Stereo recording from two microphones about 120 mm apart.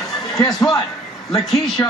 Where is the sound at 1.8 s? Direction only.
25° left (ahead or behind).